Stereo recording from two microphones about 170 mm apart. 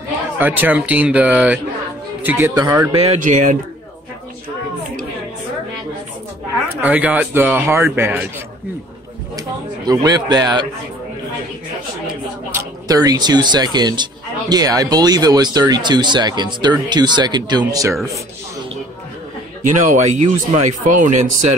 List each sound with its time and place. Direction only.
0.4 s a man's voice: 10° right (ahead or behind)
2.9 s speech: 35° right (ahead or behind)
3.2 s speech: 50° right (ahead or behind)
6.8 s a man's voice: 10° right (ahead or behind)
9.4 s speech: 20° right (ahead or behind)
12.5 s speech: 20° right (ahead or behind)
19.6 s speech: 45° right (ahead or behind)